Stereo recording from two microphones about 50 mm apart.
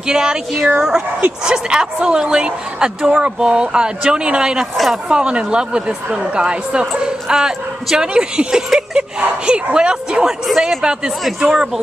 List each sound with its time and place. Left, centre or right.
0.0 s a woman's voice: centre
10.4 s a man's voice: centre